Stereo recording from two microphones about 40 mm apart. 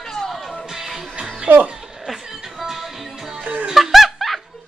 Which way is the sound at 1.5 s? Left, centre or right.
Right.